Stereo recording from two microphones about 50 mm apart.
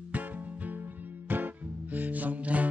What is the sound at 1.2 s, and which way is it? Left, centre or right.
Music, right.